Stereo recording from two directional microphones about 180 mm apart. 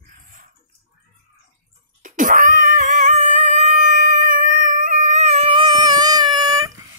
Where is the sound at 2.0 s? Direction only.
45° right (ahead or behind); by 6.7 s 20° right (ahead or behind).